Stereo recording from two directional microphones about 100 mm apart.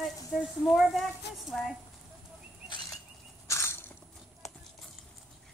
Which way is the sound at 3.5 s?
25° left (ahead or behind).